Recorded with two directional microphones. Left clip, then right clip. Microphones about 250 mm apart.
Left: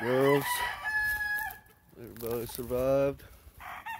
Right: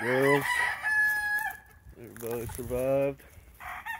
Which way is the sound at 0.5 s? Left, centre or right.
Right.